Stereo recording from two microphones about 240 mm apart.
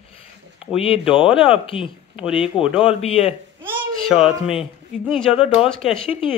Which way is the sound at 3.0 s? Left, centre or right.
Left.